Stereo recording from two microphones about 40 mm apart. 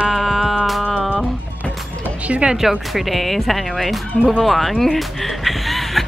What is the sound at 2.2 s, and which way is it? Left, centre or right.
Speech, right.